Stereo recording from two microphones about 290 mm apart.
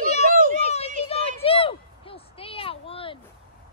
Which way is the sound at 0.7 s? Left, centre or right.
Centre.